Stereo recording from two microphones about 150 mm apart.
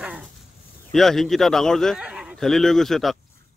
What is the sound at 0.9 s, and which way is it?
A man's voice, centre (ahead or behind).